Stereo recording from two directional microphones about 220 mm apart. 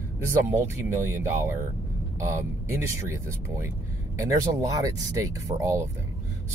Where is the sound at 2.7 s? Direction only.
10° right (ahead or behind).